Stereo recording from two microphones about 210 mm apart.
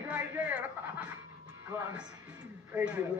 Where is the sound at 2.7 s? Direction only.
5° right (ahead or behind).